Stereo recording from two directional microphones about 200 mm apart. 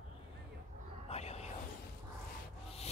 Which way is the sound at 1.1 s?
35° left (ahead or behind).